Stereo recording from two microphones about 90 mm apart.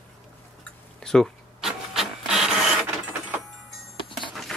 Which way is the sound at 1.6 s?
5° right (ahead or behind).